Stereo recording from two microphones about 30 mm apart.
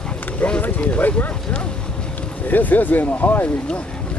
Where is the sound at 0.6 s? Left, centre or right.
Left.